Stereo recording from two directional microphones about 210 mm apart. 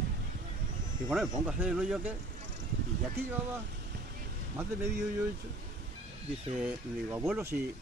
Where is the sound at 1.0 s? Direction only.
Centre (ahead or behind).